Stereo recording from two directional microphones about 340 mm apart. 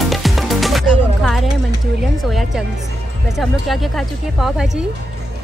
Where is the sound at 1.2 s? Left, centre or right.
Centre.